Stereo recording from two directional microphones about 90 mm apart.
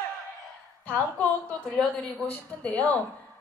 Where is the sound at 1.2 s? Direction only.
15° left (ahead or behind).